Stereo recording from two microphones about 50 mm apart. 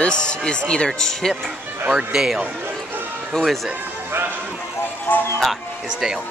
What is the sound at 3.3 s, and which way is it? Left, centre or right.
Speech, centre.